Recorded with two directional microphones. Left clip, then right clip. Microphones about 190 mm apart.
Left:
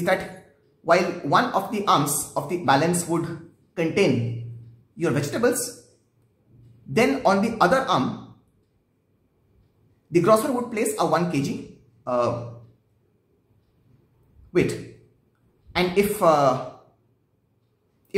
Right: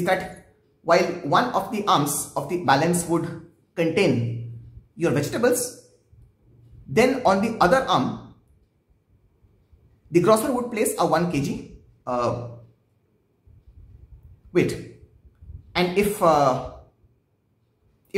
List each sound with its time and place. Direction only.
0.0 s speech: centre (ahead or behind)
6.9 s speech: 5° right (ahead or behind)
10.1 s speech: 5° right (ahead or behind)
14.5 s speech: 5° right (ahead or behind)